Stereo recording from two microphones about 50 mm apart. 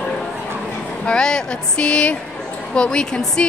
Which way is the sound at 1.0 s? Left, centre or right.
Centre.